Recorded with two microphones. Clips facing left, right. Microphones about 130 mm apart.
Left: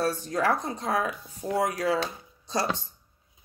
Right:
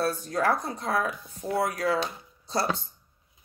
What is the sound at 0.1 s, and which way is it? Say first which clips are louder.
Speech: even; 20° left (ahead or behind).